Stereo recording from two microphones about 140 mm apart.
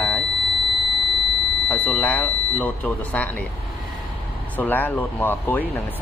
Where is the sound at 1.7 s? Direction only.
10° left (ahead or behind).